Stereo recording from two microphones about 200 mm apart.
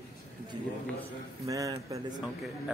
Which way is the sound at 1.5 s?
15° right (ahead or behind).